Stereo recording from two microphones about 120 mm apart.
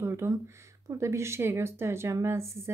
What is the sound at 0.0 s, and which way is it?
Speech, 25° right (ahead or behind).